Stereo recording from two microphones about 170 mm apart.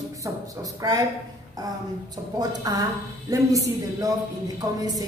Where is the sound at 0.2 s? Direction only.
20° right (ahead or behind).